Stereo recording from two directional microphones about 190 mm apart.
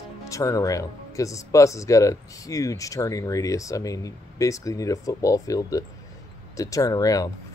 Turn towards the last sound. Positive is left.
turn(degrees=20)  # may be behind; listen again after turning